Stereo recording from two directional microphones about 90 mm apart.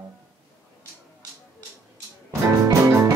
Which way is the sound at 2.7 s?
35° right (ahead or behind).